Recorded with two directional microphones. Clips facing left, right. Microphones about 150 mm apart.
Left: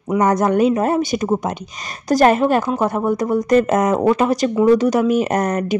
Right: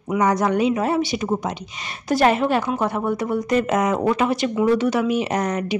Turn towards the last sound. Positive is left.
turn(degrees=45)  # may be behind; listen again after turning